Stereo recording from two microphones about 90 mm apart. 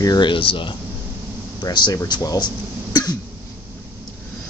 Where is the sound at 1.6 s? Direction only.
55° left (ahead or behind).